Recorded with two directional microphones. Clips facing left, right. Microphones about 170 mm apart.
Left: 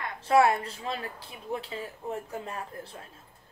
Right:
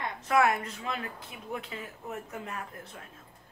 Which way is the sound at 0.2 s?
30° left (ahead or behind).